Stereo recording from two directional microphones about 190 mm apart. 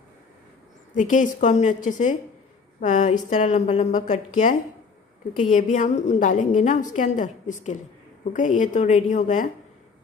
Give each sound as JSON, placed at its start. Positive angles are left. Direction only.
{"t": 0.9, "sound": "a woman's voice", "side_deg": 40}